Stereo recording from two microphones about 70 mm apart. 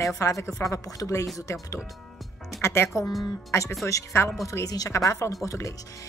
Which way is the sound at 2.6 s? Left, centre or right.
Left.